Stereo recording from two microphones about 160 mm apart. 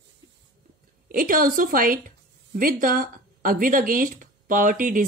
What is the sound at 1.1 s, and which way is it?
Speech, 60° right (ahead or behind).